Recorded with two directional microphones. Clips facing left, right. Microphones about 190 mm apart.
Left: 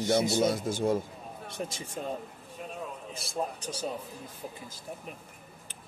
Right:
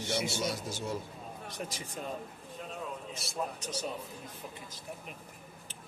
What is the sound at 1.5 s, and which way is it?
Speech, 25° left (ahead or behind).